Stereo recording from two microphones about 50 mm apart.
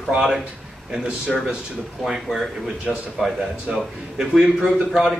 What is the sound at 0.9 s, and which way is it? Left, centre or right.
Speech, centre.